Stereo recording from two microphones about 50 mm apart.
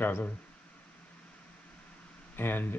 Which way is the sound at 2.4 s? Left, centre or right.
Left.